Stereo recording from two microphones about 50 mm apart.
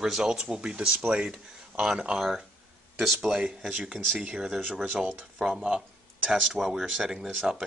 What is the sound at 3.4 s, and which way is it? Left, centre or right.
Speech, right.